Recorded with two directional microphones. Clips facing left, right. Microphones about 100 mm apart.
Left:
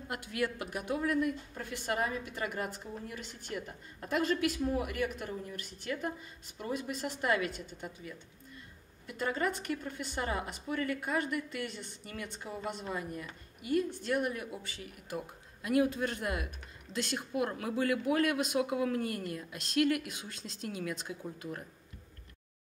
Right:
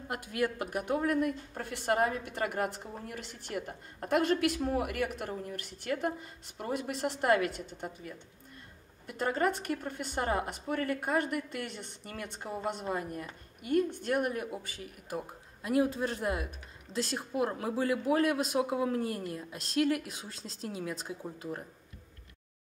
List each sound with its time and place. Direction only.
0.1 s a woman's voice: 45° right (ahead or behind)